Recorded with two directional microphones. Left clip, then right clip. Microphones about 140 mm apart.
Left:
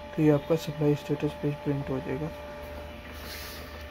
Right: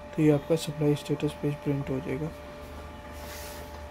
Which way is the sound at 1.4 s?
10° right (ahead or behind).